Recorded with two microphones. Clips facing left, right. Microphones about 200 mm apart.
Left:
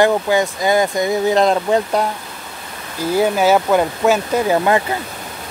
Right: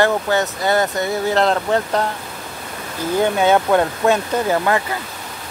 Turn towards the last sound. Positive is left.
turn(degrees=10)  # may be behind; listen again after turning